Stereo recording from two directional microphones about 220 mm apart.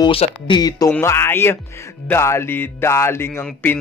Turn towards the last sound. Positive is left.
turn(degrees=10)  # may be behind; listen again after turning